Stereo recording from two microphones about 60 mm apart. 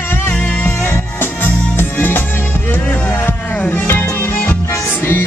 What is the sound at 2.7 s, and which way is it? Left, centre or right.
Music, left.